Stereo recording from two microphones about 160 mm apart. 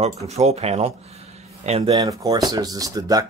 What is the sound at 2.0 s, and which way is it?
Speech, 20° right (ahead or behind).